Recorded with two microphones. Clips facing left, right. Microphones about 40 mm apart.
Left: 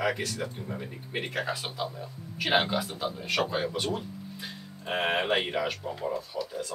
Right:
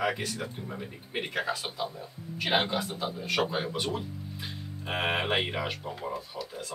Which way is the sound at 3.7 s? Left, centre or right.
Right.